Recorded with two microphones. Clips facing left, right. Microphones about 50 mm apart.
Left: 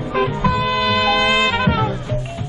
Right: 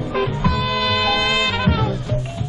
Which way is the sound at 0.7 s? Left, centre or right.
Centre.